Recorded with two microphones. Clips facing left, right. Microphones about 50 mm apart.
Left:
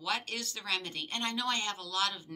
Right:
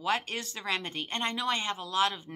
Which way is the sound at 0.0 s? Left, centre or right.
Right.